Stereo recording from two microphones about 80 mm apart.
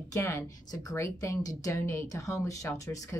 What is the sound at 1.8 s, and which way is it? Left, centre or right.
Speech, left.